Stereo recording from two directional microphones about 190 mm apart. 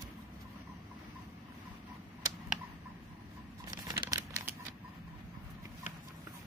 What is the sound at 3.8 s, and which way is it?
Crumpling, 20° right (ahead or behind).